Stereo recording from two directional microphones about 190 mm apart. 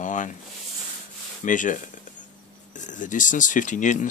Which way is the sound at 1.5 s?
45° left (ahead or behind).